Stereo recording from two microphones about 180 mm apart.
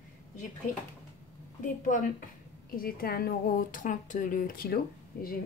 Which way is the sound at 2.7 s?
55° left (ahead or behind).